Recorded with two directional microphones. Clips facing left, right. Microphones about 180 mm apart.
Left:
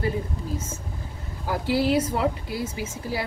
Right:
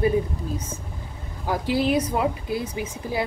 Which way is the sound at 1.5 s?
20° right (ahead or behind).